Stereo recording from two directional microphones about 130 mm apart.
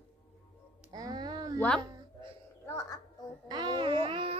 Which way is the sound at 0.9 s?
30° right (ahead or behind).